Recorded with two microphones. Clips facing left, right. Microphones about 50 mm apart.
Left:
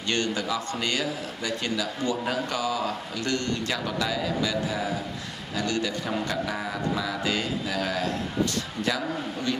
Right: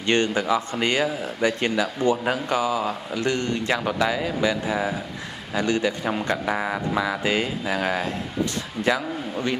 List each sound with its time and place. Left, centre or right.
0.0 s speech: right